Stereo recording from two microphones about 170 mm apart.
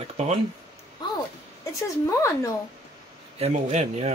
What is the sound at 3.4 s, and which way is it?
Speech, 40° right (ahead or behind).